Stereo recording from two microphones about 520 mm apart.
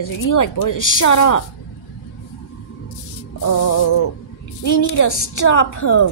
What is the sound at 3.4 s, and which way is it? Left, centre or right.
Speech, left.